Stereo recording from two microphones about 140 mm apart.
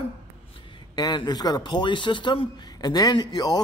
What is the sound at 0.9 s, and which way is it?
Speech, 30° left (ahead or behind).